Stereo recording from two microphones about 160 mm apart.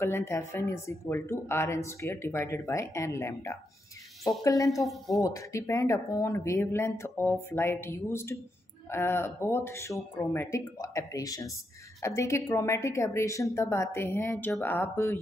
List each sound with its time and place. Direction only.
0.0 s a woman's voice: 15° left (ahead or behind)
4.8 s speech: centre (ahead or behind)
5.2 s speech: 20° left (ahead or behind)